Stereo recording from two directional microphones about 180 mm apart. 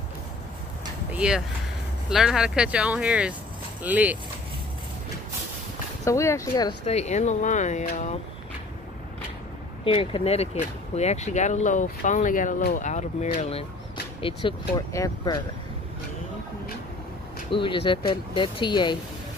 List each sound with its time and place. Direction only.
1.1 s speech: 5° right (ahead or behind)
6.0 s speech: 15° left (ahead or behind)
6.9 s speech: 40° left (ahead or behind)
9.8 s speech: 30° left (ahead or behind)
17.5 s speech: 30° left (ahead or behind)